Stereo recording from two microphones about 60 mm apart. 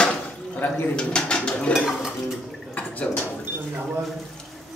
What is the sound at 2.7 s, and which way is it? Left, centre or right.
Drip, left.